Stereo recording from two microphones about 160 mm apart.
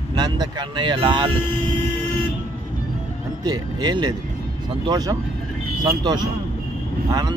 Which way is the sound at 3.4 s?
25° right (ahead or behind).